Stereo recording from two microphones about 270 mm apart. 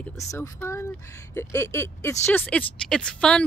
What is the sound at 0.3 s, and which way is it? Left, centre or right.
Speech, centre.